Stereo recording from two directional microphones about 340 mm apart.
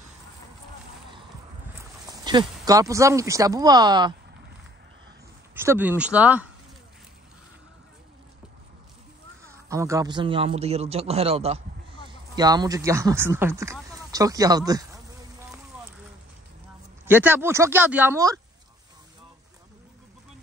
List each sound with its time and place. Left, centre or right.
1.8 s speech: centre
5.5 s speech: centre
9.4 s a man's voice: centre
17.0 s a man's voice: centre